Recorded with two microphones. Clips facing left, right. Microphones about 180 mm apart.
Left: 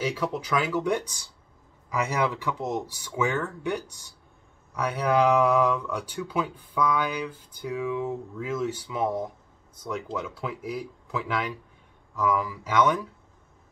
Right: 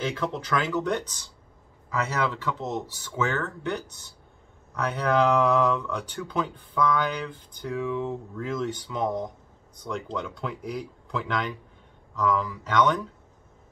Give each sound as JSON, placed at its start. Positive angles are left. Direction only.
{"t": 0.0, "sound": "speech", "side_deg": 10}